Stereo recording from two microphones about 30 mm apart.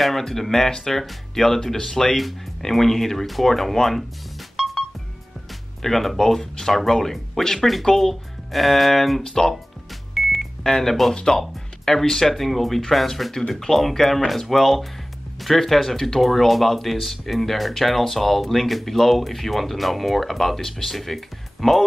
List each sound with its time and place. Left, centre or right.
0.2 s speech: centre
4.6 s music: centre
5.8 s speech: centre
10.1 s music: centre
10.6 s speech: centre
13.3 s speech: centre
13.7 s speech: centre